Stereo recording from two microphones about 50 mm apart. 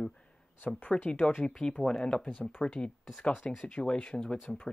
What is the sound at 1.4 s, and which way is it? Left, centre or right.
Speech, centre.